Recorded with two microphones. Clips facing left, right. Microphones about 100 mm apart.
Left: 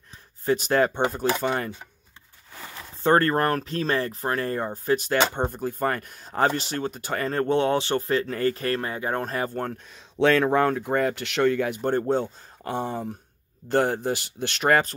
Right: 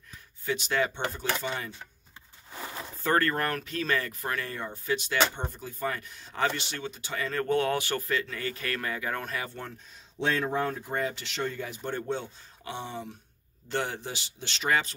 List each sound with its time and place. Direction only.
0.5 s speech: 45° left (ahead or behind)
1.4 s speech: 60° left (ahead or behind)
2.6 s a sound: 20° right (ahead or behind)
3.0 s speech: 30° left (ahead or behind); by 7.3 s 50° left (ahead or behind)
7.3 s speech: 25° left (ahead or behind); by 9.8 s 45° left (ahead or behind)
9.8 s speech: 75° left (ahead or behind)
11.9 s speech: 40° left (ahead or behind)